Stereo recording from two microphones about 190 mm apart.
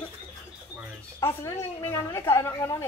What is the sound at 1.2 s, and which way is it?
A woman's voice, 15° left (ahead or behind).